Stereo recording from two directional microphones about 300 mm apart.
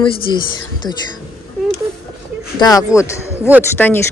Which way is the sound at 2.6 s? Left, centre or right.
Centre.